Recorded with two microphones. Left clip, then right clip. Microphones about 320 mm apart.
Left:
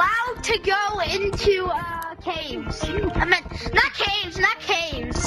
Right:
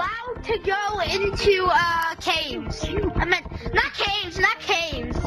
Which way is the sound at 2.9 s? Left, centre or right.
Centre.